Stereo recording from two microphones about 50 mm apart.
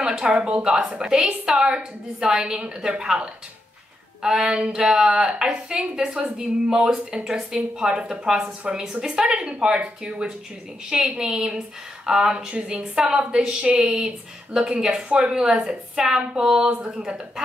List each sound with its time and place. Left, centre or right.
0.0 s a woman's voice: centre